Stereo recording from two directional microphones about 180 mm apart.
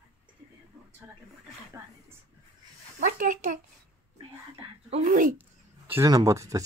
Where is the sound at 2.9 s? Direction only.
50° right (ahead or behind).